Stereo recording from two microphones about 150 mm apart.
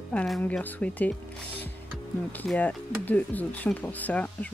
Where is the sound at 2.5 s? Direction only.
10° left (ahead or behind).